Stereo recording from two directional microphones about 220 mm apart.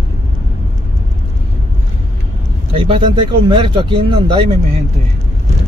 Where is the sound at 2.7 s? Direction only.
25° right (ahead or behind).